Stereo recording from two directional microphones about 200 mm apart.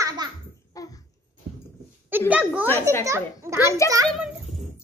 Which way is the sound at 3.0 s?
15° right (ahead or behind).